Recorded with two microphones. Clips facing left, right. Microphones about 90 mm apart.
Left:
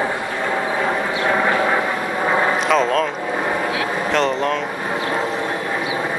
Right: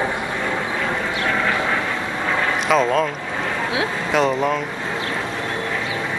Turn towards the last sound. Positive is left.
turn(degrees=-5)  # may be behind; listen again after turning